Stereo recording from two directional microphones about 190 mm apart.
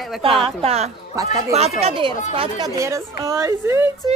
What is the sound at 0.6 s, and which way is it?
Speech, 35° right (ahead or behind).